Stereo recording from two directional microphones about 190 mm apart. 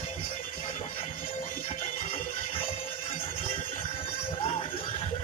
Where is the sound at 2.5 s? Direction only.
30° left (ahead or behind).